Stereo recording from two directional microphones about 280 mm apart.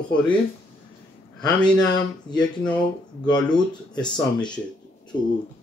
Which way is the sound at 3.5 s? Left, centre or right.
Centre.